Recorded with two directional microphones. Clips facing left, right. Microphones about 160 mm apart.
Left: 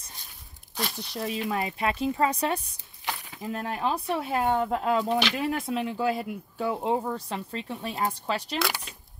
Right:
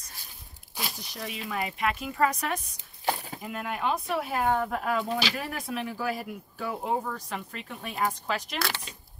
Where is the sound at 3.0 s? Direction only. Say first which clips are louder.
Right 5 dB; 35° right (ahead or behind).